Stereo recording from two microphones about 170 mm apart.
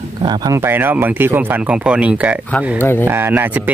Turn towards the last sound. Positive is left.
turn(degrees=-10)  # may be behind; listen again after turning